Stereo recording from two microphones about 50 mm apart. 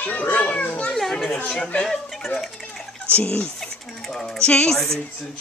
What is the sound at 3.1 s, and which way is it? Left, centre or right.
Speech, centre.